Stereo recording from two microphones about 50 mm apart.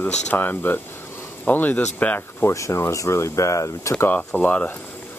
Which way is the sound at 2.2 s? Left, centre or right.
Left.